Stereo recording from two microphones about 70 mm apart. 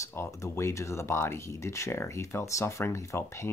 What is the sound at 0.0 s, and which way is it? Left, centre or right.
Speech, left.